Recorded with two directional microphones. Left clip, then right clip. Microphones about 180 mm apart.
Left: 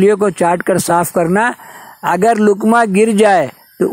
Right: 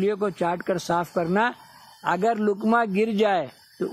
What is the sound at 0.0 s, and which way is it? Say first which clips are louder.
Speech: left 13 dB; 30° left (ahead or behind).